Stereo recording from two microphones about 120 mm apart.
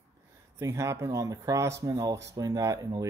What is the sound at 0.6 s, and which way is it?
Speech, 25° right (ahead or behind).